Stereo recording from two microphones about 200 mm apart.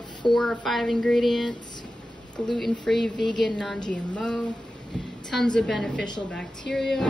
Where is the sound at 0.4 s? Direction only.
5° left (ahead or behind).